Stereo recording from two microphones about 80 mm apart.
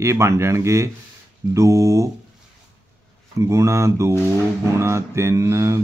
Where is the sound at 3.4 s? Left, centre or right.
Right.